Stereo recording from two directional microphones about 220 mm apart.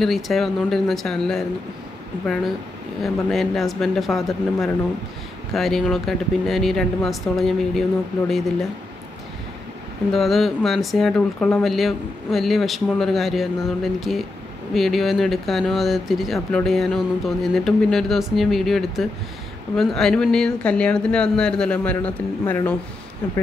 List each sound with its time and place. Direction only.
0.0 s speech: centre (ahead or behind)
3.0 s speech: centre (ahead or behind)
10.1 s speech: centre (ahead or behind)